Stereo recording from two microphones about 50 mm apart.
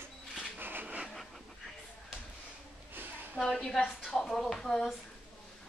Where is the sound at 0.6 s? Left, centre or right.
Right.